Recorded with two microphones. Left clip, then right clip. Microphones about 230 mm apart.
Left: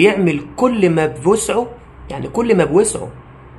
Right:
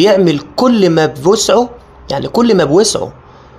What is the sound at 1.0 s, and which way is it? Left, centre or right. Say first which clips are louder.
Speech: right 5 dB; centre.